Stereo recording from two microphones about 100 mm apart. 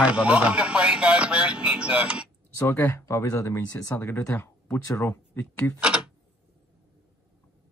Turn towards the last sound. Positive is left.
turn(degrees=-10)  # may be behind; listen again after turning